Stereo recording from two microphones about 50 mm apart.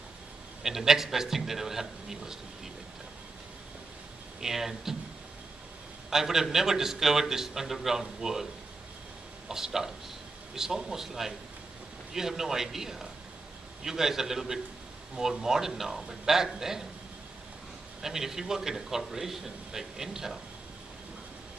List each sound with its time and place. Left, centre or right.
0.7 s a man's voice: centre
4.4 s a man's voice: centre
6.0 s a man's voice: centre
9.5 s a man's voice: centre
18.0 s a man's voice: centre